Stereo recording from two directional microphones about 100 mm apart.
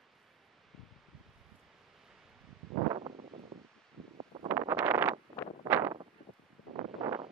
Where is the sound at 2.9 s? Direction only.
60° right (ahead or behind).